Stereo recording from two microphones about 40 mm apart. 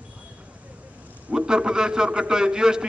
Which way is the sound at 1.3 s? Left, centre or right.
Centre.